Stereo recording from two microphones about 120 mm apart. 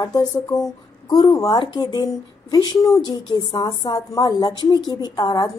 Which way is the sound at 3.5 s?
35° left (ahead or behind).